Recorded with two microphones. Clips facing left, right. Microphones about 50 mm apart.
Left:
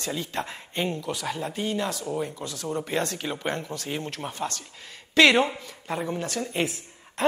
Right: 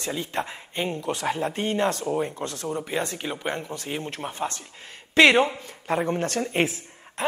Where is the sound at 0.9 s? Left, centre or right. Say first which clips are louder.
Right 3 dB; right.